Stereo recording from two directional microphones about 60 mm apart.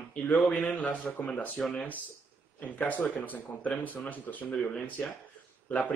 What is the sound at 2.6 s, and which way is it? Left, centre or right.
Speech, left.